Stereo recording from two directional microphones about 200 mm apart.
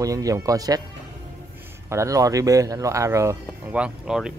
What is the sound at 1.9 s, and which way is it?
Speech, 15° right (ahead or behind).